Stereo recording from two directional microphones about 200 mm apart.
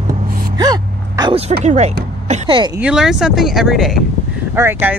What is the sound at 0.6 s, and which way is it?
Speech, 20° right (ahead or behind).